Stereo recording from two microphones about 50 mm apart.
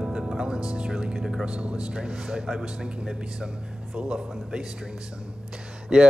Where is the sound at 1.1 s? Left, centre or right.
Centre.